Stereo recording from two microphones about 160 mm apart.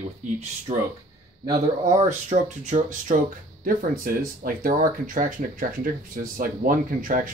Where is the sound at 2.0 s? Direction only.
50° right (ahead or behind).